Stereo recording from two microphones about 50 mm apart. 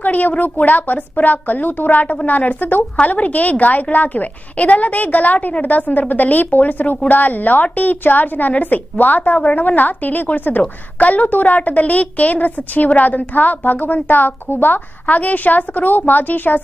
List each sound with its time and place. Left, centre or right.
0.0 s a woman's voice: left